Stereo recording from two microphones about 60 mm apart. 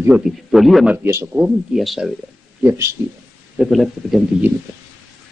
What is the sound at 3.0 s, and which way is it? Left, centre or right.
Speech, right.